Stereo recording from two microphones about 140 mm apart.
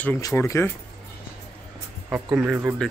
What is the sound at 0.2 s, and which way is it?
Speech, 20° left (ahead or behind).